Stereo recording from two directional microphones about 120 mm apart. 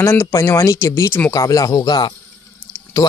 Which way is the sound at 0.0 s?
20° left (ahead or behind).